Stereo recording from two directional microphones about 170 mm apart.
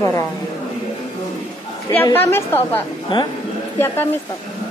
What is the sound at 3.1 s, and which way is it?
Speech, 30° left (ahead or behind).